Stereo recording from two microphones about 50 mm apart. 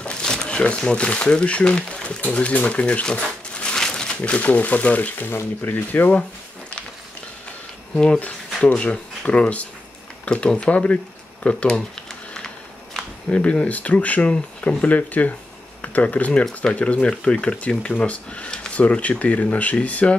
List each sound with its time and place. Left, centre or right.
0.0 s a sound: centre
0.8 s speech: centre
2.3 s crumpling: left
4.2 s speech: left
5.3 s speech: left
7.9 s speech: centre
13.3 s speech: left